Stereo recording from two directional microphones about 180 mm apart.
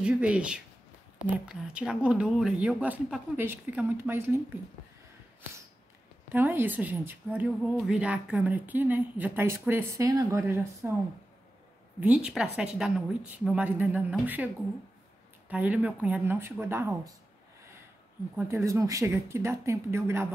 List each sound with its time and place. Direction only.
0.0 s a woman's voice: 5° right (ahead or behind)
6.2 s a woman's voice: 10° right (ahead or behind)
12.0 s a woman's voice: 5° right (ahead or behind)
15.5 s a woman's voice: 10° right (ahead or behind)
18.3 s a woman's voice: 15° right (ahead or behind)